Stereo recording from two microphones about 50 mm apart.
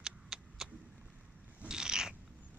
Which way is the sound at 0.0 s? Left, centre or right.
Centre.